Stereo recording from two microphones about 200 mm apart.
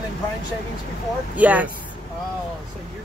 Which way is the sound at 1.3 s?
10° right (ahead or behind).